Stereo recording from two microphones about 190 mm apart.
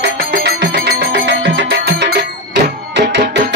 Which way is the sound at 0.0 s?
55° right (ahead or behind).